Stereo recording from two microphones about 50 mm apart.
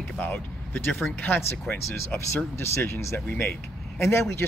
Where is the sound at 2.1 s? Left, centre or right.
Left.